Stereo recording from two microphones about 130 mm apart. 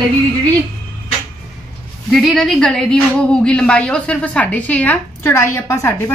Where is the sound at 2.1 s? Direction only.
Centre (ahead or behind).